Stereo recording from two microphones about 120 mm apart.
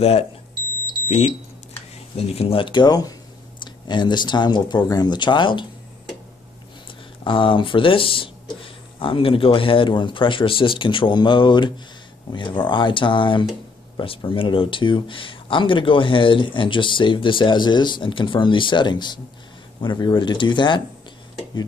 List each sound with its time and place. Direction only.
1.0 s speech: 65° left (ahead or behind)
2.1 s speech: 50° left (ahead or behind)
7.2 s speech: 45° left (ahead or behind)